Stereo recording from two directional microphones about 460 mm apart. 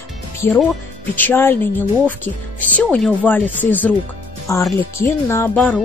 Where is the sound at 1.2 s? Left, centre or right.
Centre.